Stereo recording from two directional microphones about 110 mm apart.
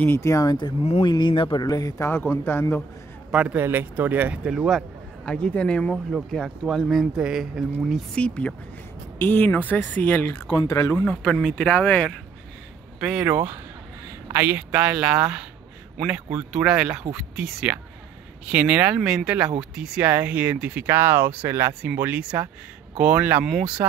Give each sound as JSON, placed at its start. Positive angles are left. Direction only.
{"t": 0.0, "sound": "speech", "side_deg": 25}
{"t": 1.0, "sound": "a sound", "side_deg": 45}
{"t": 2.0, "sound": "speech", "side_deg": 20}
{"t": 3.3, "sound": "speech", "side_deg": -10}
{"t": 5.2, "sound": "speech", "side_deg": 10}
{"t": 10.7, "sound": "speech", "side_deg": 30}
{"t": 11.1, "sound": "speech", "side_deg": 5}
{"t": 13.0, "sound": "speech", "side_deg": -10}
{"t": 14.3, "sound": "speech", "side_deg": -20}
{"t": 16.3, "sound": "speech", "side_deg": -5}
{"t": 23.4, "sound": "speech", "side_deg": 0}